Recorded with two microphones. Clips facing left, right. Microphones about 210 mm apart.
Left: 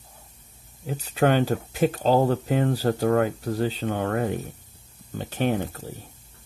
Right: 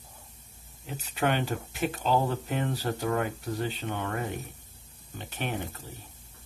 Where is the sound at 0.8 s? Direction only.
40° left (ahead or behind).